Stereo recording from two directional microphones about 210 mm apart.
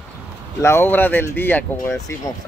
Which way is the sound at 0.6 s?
10° left (ahead or behind).